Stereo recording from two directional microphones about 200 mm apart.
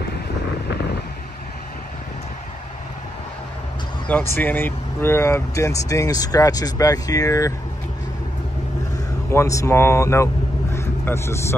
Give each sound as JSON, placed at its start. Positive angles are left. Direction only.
{"t": 4.4, "sound": "speech", "side_deg": 10}
{"t": 9.3, "sound": "speech", "side_deg": 15}